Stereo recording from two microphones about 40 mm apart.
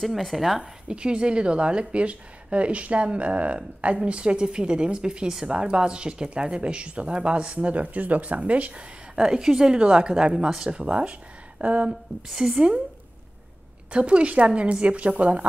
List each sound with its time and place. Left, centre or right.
0.0 s speech: centre
0.6 s speech: right
9.1 s speech: centre
10.7 s speech: right
11.9 s speech: centre
13.9 s speech: right